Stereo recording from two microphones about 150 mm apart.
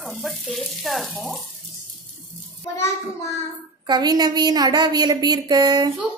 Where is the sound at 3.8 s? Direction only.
30° right (ahead or behind).